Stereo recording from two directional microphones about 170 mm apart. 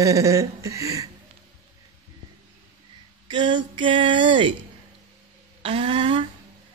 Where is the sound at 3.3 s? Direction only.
25° right (ahead or behind).